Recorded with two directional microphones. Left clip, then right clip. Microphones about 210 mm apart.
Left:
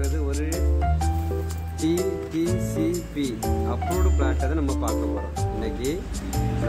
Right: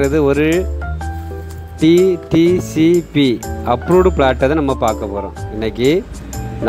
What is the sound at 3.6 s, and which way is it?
Speech, 35° right (ahead or behind).